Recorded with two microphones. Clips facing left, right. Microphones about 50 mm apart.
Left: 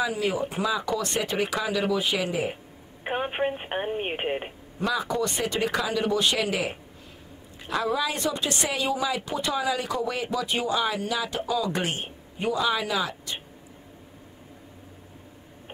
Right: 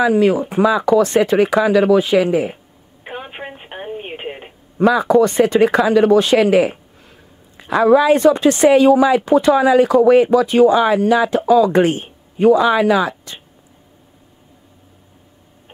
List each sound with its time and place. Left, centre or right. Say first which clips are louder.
0.0 s speech: right 12 dB; right
3.0 s telephone: left 3 dB; left
3.9 s speech: right 1 dB; left
4.7 s speech: right 14 dB; right
7.8 s speech: right 17 dB; right